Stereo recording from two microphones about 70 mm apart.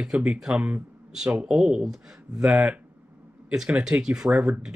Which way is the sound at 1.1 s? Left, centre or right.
Centre.